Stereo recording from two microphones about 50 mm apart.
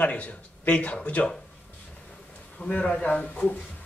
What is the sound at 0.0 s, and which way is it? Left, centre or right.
Speech, left.